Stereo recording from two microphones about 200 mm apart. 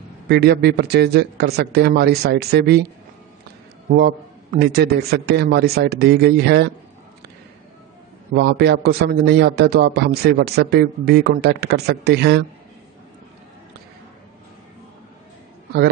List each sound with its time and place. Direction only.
0.3 s speech: 55° right (ahead or behind)
3.9 s a man's voice: 50° right (ahead or behind)
8.4 s a man's voice: 55° right (ahead or behind)